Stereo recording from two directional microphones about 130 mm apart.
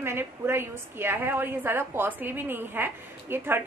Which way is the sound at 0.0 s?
20° right (ahead or behind).